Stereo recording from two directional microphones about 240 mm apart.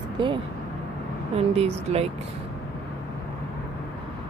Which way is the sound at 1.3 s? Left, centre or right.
Right.